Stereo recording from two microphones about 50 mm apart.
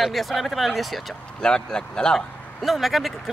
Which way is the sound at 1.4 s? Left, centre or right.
Centre.